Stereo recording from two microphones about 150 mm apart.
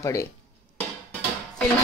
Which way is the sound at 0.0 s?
20° left (ahead or behind).